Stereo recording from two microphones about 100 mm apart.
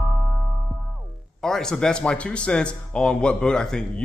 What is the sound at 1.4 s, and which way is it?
Speech, 5° left (ahead or behind).